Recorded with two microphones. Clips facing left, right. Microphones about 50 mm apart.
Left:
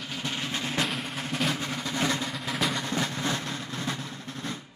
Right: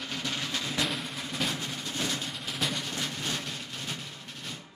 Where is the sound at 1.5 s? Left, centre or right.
Left.